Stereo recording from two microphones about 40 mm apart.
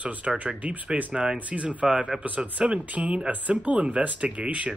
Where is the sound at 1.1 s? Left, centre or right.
Centre.